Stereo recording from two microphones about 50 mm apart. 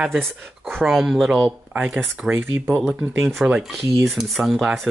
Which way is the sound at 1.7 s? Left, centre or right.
Centre.